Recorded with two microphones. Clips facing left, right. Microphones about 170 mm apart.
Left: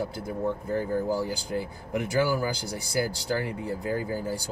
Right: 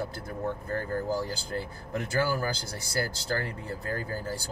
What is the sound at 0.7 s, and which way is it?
Speech, 15° left (ahead or behind).